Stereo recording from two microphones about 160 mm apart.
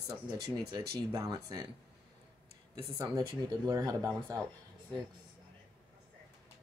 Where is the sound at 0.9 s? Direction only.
25° right (ahead or behind).